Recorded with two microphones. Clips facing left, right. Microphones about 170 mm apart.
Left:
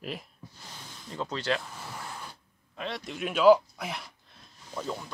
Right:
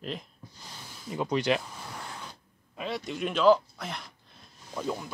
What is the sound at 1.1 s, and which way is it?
Speech, 15° right (ahead or behind).